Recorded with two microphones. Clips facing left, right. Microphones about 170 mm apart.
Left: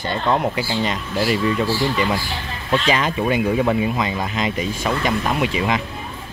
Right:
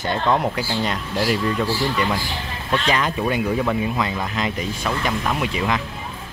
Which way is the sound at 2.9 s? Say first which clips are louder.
Left 1 dB; 10° left (ahead or behind).